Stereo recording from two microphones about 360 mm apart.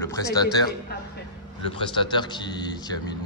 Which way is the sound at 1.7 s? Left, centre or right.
Centre.